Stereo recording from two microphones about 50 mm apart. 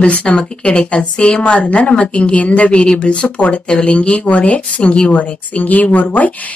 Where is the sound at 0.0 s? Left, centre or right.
Left.